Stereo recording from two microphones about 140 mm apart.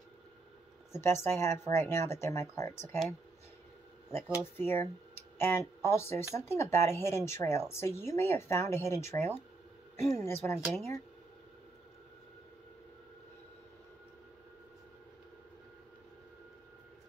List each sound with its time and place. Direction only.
0.9 s speech: 20° left (ahead or behind)
4.6 s speech: 15° left (ahead or behind)